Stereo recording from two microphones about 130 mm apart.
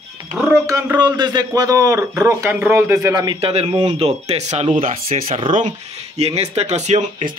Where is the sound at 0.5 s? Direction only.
25° right (ahead or behind).